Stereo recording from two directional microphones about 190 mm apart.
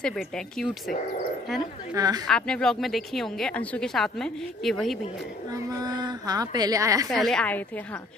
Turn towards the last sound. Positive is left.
turn(degrees=10)  # may be behind; listen again after turning